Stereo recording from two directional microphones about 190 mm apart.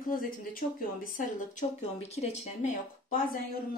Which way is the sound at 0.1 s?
50° left (ahead or behind).